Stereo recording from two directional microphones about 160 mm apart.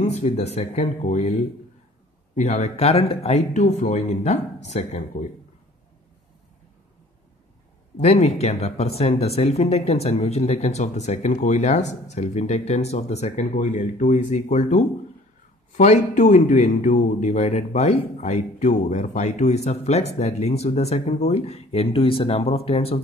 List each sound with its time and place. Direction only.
0.0 s speech: 40° left (ahead or behind)
2.3 s speech: 40° left (ahead or behind)
8.0 s speech: 40° left (ahead or behind)